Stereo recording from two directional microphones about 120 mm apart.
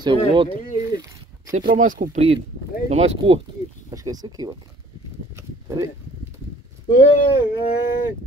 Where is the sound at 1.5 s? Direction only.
90° right.